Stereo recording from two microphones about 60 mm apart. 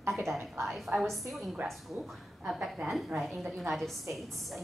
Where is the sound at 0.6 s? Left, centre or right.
Centre.